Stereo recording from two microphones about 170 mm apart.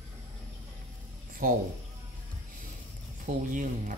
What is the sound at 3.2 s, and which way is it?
Speech, 50° right (ahead or behind).